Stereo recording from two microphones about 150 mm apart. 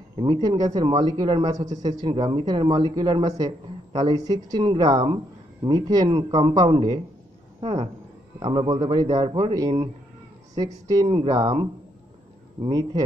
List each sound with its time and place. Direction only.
0.2 s a man's voice: 25° right (ahead or behind)